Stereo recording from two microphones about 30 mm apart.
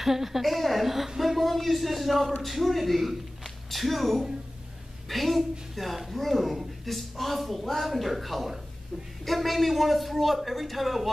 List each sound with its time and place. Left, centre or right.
0.0 s a woman's voice: centre
0.4 s a woman's voice: centre
1.2 s a woman's voice: centre